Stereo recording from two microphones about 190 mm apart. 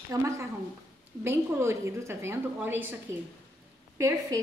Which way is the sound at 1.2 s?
15° right (ahead or behind).